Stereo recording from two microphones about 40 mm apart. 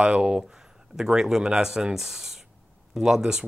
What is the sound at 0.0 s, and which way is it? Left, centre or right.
Speech, right.